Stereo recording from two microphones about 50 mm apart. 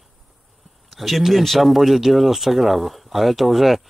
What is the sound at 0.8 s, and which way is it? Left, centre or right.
Speech, centre.